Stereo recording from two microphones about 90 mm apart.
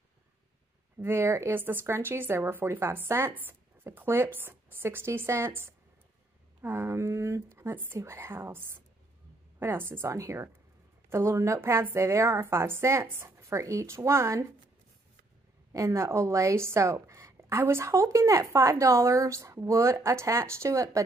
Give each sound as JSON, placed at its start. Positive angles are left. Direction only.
{"t": 1.0, "sound": "a woman's voice", "side_deg": -30}
{"t": 15.7, "sound": "a woman's voice", "side_deg": -35}